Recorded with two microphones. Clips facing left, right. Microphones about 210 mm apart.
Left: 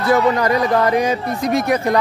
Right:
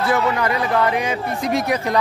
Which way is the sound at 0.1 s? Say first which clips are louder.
Left 7 dB; 40° left (ahead or behind).